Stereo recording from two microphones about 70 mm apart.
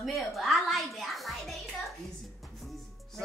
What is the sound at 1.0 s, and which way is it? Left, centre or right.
Music, centre.